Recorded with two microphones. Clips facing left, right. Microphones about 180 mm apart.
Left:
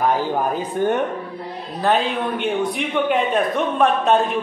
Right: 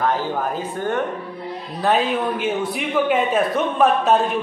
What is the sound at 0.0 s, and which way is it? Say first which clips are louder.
Speech: left 2 dB; 15° left (ahead or behind).